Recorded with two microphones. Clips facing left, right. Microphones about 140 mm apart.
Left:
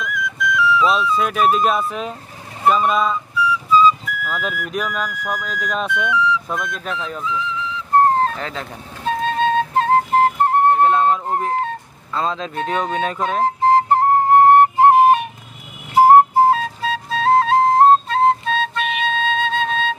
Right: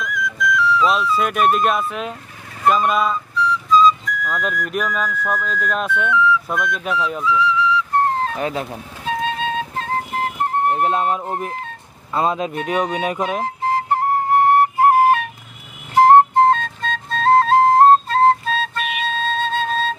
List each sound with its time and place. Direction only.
0.0 s music: centre (ahead or behind)
2.9 s flute: centre (ahead or behind)
5.0 s music: 10° left (ahead or behind)
5.7 s speech: 5° right (ahead or behind)
5.9 s speech: 15° left (ahead or behind)
6.5 s speech: centre (ahead or behind)
7.2 s music: 40° left (ahead or behind)
8.4 s speech: 15° right (ahead or behind)
9.0 s music: 40° left (ahead or behind)
10.8 s speech: 20° right (ahead or behind)
13.4 s flute: 30° left (ahead or behind); by 20.0 s centre (ahead or behind)